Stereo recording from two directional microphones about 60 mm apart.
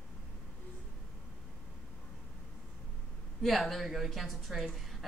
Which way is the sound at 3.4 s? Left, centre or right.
Centre.